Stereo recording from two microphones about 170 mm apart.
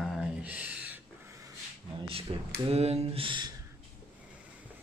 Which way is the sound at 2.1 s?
35° right (ahead or behind).